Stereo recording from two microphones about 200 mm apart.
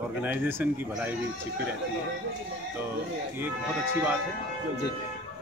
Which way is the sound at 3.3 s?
10° right (ahead or behind).